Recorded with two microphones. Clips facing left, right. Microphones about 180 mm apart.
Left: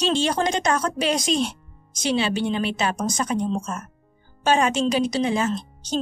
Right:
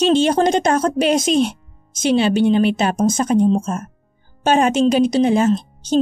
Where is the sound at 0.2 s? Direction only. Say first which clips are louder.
Right 7 dB; 50° right (ahead or behind).